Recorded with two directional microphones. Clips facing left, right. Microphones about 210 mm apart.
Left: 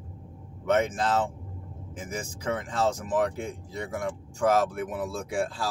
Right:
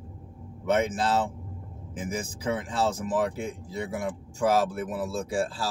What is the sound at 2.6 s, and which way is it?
Speech, 5° right (ahead or behind).